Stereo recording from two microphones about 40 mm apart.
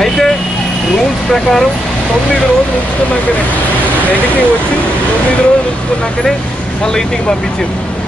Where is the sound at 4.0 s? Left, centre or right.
Left.